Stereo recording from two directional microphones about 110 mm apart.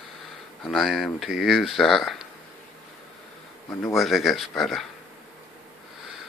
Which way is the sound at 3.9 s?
Centre (ahead or behind).